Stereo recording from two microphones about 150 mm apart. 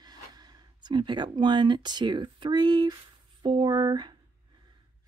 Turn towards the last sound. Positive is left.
turn(degrees=-30)  # may be behind; listen again after turning